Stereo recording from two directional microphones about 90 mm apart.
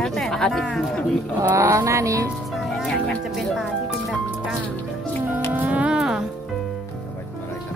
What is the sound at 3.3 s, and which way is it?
Speech, 5° right (ahead or behind).